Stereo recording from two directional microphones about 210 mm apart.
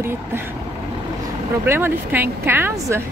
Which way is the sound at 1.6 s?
10° right (ahead or behind).